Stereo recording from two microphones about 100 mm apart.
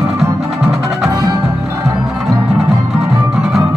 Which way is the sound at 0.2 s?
Centre (ahead or behind).